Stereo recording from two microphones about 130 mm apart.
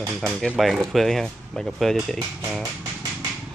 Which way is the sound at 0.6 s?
Centre (ahead or behind).